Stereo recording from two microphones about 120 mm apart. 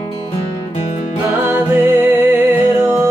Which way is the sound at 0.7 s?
65° left (ahead or behind).